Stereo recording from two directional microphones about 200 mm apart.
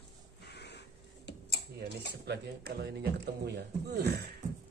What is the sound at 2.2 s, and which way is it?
A man's voice, 55° right (ahead or behind).